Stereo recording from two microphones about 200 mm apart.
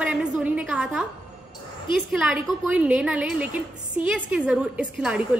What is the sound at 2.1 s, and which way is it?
A woman's voice, 5° right (ahead or behind).